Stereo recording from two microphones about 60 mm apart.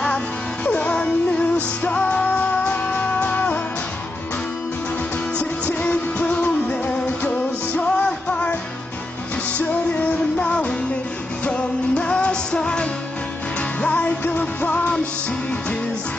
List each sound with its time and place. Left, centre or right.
0.7 s music: centre
5.4 s music: left
9.6 s music: left
13.6 s music: left